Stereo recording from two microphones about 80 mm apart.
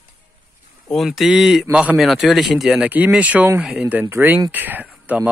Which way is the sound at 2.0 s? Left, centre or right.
Centre.